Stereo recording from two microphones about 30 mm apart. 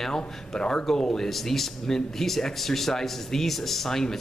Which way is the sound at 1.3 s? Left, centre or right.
Centre.